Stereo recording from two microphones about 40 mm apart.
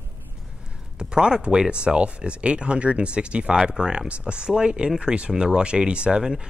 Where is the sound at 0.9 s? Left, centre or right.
Right.